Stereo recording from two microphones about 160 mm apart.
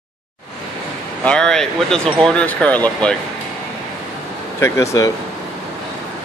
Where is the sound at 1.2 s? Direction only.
5° left (ahead or behind).